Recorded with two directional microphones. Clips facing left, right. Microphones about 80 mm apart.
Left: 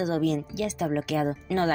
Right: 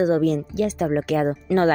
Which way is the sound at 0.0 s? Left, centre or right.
Right.